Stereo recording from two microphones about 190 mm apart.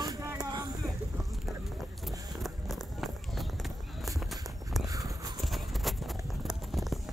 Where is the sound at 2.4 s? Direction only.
Centre (ahead or behind).